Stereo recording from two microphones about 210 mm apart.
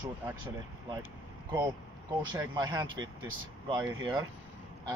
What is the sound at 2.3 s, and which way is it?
Speech, 15° right (ahead or behind).